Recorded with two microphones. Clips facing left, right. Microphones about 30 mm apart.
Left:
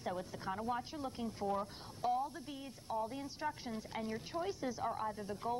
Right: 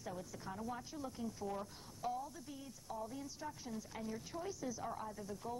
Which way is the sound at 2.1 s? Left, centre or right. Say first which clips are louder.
Left 7 dB; left.